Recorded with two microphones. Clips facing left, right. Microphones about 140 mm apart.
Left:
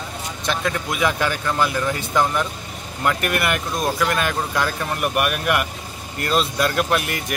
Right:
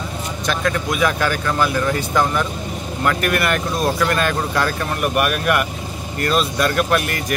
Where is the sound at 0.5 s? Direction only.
20° left (ahead or behind).